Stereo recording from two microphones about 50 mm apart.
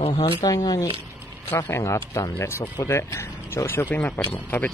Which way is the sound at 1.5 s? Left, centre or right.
Left.